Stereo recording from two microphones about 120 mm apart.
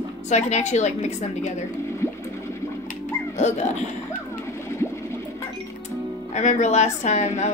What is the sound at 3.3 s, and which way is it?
Speech, 75° left (ahead or behind).